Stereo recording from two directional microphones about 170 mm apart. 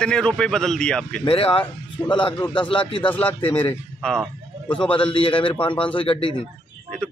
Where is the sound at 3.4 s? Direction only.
30° left (ahead or behind).